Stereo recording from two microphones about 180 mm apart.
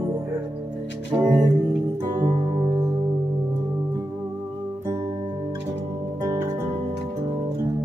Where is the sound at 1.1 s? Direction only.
25° right (ahead or behind).